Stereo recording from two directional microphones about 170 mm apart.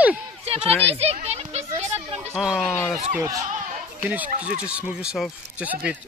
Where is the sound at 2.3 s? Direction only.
Centre (ahead or behind).